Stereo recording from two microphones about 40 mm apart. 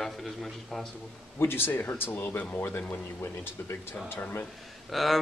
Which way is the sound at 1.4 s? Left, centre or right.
Left.